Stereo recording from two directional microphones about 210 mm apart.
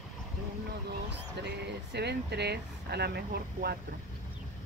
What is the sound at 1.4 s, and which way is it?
Speech, 50° right (ahead or behind).